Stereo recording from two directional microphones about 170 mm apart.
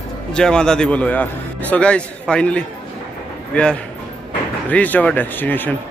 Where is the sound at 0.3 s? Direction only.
5° left (ahead or behind).